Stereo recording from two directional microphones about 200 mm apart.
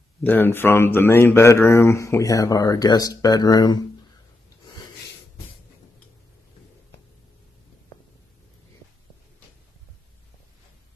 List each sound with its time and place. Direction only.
0.2 s speech: 10° left (ahead or behind)